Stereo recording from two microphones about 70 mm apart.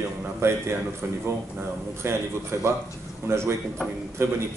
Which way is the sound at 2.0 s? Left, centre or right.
Right.